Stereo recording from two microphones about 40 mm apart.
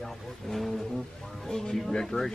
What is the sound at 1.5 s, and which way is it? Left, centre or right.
Speech, centre.